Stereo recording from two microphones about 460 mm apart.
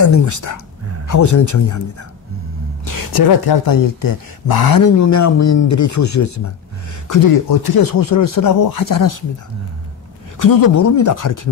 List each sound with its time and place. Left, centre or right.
0.0 s speech: left
2.8 s speech: left
7.1 s speech: left
10.4 s speech: left